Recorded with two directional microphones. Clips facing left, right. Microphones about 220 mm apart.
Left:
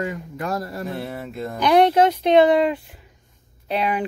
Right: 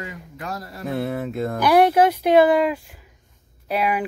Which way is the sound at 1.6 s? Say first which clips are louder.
Even; 5° right (ahead or behind).